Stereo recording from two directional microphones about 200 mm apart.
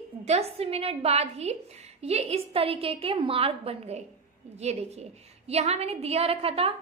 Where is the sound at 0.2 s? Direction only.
30° right (ahead or behind).